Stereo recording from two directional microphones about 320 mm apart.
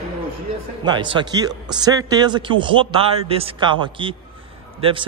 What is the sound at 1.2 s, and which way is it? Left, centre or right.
A man's voice, centre.